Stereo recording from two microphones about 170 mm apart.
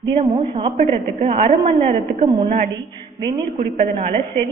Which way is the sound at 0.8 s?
45° right (ahead or behind).